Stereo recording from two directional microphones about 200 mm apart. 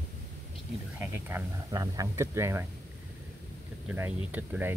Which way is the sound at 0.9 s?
10° right (ahead or behind).